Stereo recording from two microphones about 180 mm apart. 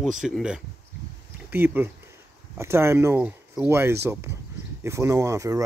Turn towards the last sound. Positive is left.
turn(degrees=-15)  # may be behind; listen again after turning